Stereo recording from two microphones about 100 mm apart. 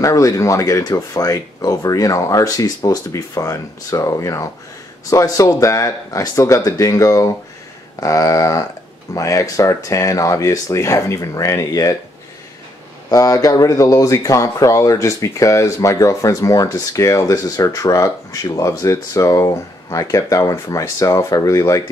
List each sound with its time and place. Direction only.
0.0 s speech: 35° left (ahead or behind)
13.1 s speech: 35° left (ahead or behind)